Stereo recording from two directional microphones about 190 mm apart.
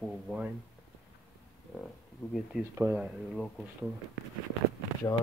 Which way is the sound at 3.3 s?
Centre (ahead or behind).